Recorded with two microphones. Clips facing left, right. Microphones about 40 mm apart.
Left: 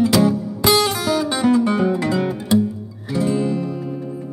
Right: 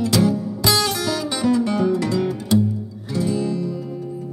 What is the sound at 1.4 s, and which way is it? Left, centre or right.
Music, left.